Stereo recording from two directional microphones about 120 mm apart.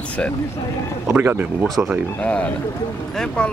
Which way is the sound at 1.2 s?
15° right (ahead or behind).